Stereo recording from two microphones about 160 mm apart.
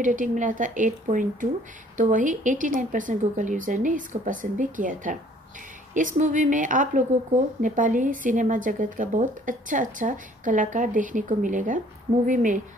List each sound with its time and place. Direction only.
0.0 s a woman's voice: 55° right (ahead or behind)